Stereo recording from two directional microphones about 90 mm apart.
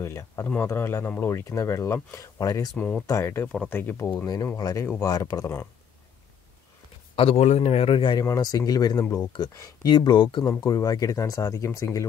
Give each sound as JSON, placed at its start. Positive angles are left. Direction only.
{"t": 0.0, "sound": "speech", "side_deg": 30}
{"t": 2.8, "sound": "speech", "side_deg": 10}
{"t": 3.1, "sound": "speech", "side_deg": 30}
{"t": 3.5, "sound": "speech", "side_deg": 20}
{"t": 4.6, "sound": "speech", "side_deg": 45}
{"t": 7.2, "sound": "a man's voice", "side_deg": 90}
{"t": 8.2, "sound": "speech", "side_deg": 45}
{"t": 10.6, "sound": "speech", "side_deg": 45}